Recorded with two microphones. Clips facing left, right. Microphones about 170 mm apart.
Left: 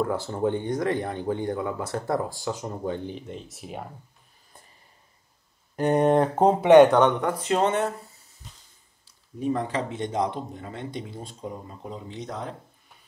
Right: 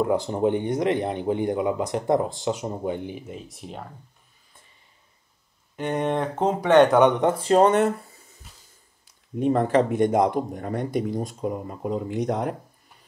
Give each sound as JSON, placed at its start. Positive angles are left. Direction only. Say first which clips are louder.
{"t": 0.0, "sound": "speech", "louder": "right 4 dB", "side_deg": -20}
{"t": 5.8, "sound": "speech", "louder": "left 5 dB", "side_deg": 40}
{"t": 6.6, "sound": "speech", "louder": "left 3 dB", "side_deg": 15}
{"t": 6.9, "sound": "speech", "louder": "right 3 dB", "side_deg": -15}
{"t": 9.4, "sound": "speech", "louder": "right 7 dB", "side_deg": -55}